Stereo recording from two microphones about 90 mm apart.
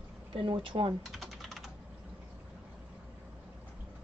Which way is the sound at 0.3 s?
75° right (ahead or behind).